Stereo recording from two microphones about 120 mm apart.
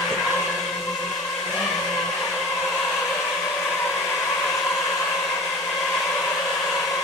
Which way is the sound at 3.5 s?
10° left (ahead or behind).